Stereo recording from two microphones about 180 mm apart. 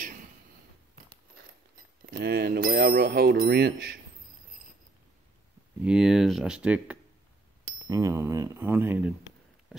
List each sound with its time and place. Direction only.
2.0 s speech: 60° right (ahead or behind)
5.8 s speech: 5° right (ahead or behind)
7.8 s speech: 20° right (ahead or behind)